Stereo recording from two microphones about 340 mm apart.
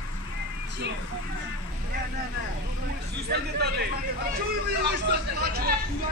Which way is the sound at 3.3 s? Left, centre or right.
Right.